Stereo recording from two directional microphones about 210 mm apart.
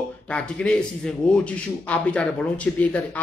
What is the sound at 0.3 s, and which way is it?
A man's voice, 5° left (ahead or behind).